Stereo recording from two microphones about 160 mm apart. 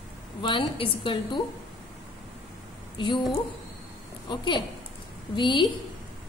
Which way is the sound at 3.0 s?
30° left (ahead or behind).